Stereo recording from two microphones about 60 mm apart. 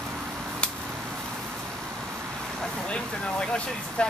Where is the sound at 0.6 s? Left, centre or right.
Centre.